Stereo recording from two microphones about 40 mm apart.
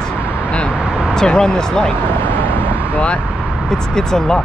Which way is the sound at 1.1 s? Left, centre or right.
Centre.